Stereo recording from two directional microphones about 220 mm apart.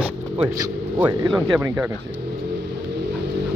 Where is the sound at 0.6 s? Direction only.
15° right (ahead or behind).